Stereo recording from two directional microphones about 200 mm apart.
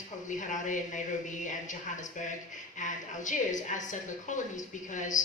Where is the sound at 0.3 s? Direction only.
40° left (ahead or behind).